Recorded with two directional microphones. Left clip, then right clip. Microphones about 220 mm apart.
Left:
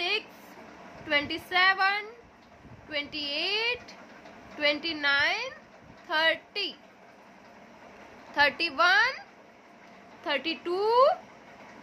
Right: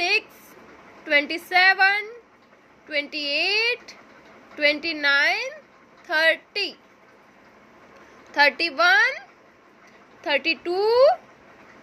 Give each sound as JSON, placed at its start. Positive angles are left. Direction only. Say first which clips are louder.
{"t": 1.0, "sound": "a woman's voice", "louder": "right 7 dB", "side_deg": -20}
{"t": 8.4, "sound": "speech", "louder": "right 5 dB", "side_deg": -15}
{"t": 10.2, "sound": "speech", "louder": "right 7 dB", "side_deg": -15}